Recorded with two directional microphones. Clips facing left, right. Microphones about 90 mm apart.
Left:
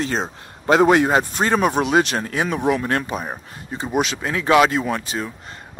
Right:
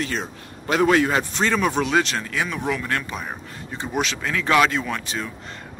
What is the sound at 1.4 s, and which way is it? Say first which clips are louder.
Speech: left 1 dB; 35° left (ahead or behind).